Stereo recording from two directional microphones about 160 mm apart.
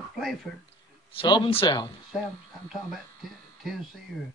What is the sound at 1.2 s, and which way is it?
Speech, 35° left (ahead or behind).